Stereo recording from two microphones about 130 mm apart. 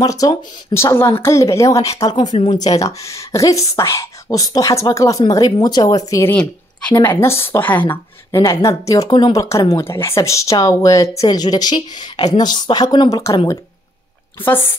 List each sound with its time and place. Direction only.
0.0 s speech: 30° left (ahead or behind)
14.4 s speech: 15° left (ahead or behind)